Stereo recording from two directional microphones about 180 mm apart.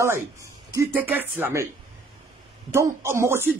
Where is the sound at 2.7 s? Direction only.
15° right (ahead or behind).